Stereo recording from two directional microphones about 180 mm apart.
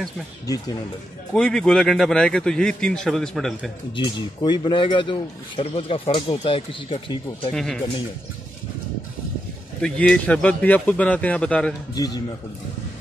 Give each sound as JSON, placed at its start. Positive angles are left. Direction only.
{"t": 1.3, "sound": "a man's voice", "side_deg": 5}
{"t": 3.9, "sound": "a man's voice", "side_deg": 25}
{"t": 7.5, "sound": "a man's voice", "side_deg": 0}
{"t": 9.8, "sound": "a man's voice", "side_deg": 5}
{"t": 11.9, "sound": "a man's voice", "side_deg": 20}